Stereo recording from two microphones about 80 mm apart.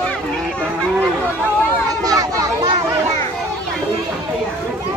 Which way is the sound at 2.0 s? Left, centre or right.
Right.